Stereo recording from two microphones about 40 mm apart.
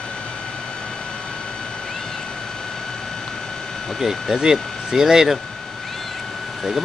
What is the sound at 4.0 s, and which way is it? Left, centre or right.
Speech, centre.